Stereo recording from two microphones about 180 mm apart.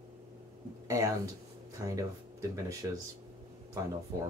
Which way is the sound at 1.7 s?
20° right (ahead or behind).